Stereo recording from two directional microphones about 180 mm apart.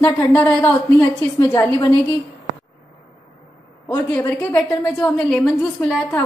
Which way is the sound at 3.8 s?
15° left (ahead or behind).